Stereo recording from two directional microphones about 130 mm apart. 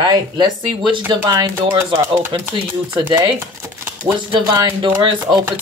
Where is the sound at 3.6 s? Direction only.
20° right (ahead or behind).